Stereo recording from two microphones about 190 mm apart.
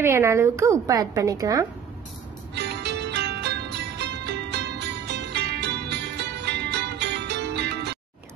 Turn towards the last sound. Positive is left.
turn(degrees=-60)  # may be behind; listen again after turning